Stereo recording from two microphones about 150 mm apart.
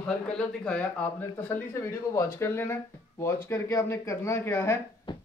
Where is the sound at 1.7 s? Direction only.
20° left (ahead or behind).